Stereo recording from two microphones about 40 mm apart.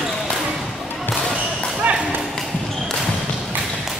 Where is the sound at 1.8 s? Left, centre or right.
Right.